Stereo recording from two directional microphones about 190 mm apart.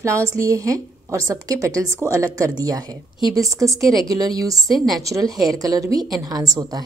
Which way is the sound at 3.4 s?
15° right (ahead or behind).